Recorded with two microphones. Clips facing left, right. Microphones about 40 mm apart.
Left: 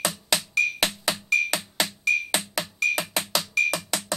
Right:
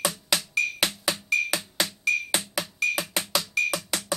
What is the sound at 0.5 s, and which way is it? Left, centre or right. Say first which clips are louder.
Music: left 3 dB; centre.